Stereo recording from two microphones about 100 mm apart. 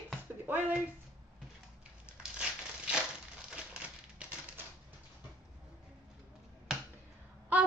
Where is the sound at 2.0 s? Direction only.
10° right (ahead or behind).